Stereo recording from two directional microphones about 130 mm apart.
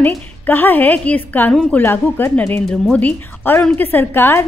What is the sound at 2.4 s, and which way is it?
Speech, 5° left (ahead or behind).